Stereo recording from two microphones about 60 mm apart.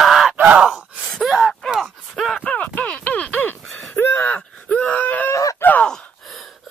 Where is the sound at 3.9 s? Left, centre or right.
Left.